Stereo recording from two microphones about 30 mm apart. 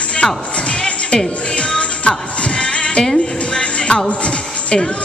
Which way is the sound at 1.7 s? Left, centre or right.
Left.